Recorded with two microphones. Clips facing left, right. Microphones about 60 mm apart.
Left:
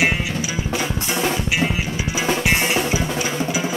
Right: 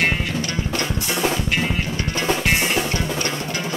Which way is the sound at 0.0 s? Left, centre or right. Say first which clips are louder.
Left 1 dB; centre.